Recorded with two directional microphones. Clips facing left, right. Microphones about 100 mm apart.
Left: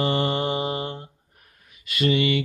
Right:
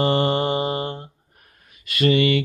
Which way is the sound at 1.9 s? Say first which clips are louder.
Right 4 dB; 60° right (ahead or behind).